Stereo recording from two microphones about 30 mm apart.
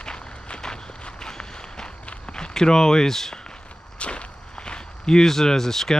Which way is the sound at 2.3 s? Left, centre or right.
Left.